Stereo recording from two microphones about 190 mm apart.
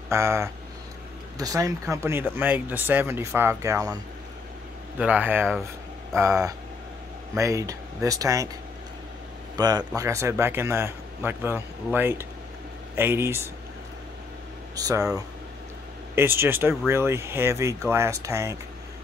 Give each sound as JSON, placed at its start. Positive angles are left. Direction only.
{"t": 0.1, "sound": "speech", "side_deg": -15}
{"t": 4.9, "sound": "speech", "side_deg": -10}
{"t": 9.6, "sound": "speech", "side_deg": -20}
{"t": 14.8, "sound": "speech", "side_deg": -20}
{"t": 16.2, "sound": "speech", "side_deg": -10}